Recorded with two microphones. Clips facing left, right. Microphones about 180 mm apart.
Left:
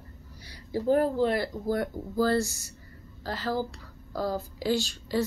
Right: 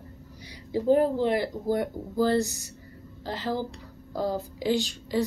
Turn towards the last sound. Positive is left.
turn(degrees=-15)  # may be behind; listen again after turning